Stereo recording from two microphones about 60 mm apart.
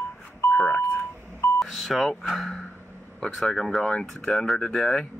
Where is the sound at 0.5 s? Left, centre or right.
Centre.